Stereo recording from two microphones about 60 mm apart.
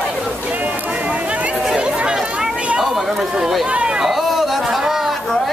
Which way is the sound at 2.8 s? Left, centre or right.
Centre.